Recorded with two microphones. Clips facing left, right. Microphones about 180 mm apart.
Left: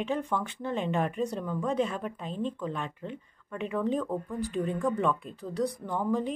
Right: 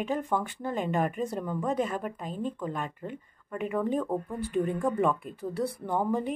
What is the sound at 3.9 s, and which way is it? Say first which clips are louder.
Speech: right 1 dB; 20° right (ahead or behind).